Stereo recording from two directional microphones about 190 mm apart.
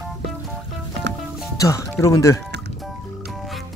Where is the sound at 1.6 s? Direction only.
15° left (ahead or behind).